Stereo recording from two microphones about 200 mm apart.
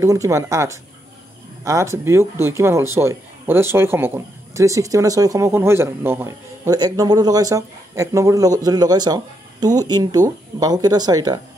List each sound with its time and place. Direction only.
0.0 s speech: 15° right (ahead or behind)